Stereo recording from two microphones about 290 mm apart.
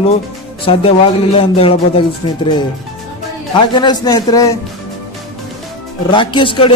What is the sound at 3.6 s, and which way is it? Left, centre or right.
Speech, centre.